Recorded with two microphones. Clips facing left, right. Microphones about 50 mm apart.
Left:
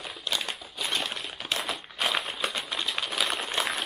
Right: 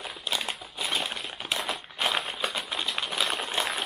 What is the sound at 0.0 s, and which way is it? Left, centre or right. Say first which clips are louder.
Typewriter: even; centre.